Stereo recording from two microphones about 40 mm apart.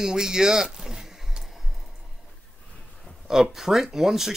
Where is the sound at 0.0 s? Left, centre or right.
Centre.